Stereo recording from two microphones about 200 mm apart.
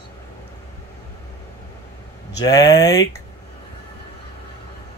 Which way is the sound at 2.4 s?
15° left (ahead or behind).